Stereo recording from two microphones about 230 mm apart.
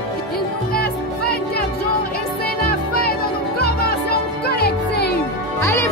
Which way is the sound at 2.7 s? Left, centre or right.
Left.